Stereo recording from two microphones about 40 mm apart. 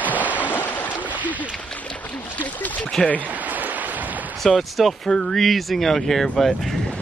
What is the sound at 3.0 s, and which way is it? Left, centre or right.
Speech, centre.